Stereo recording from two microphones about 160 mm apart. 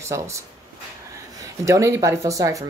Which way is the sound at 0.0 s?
20° right (ahead or behind).